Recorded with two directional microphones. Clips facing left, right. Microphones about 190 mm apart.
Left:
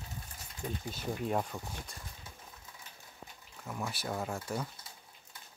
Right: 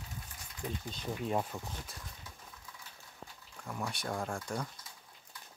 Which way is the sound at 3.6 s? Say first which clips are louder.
Even; 5° left (ahead or behind).